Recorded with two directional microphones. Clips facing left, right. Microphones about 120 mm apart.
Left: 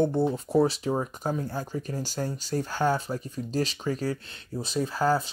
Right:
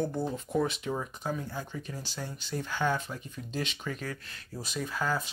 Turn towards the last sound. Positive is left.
turn(degrees=35)  # may be behind; listen again after turning